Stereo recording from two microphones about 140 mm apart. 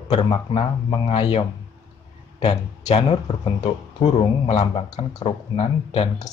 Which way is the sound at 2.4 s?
50° left (ahead or behind).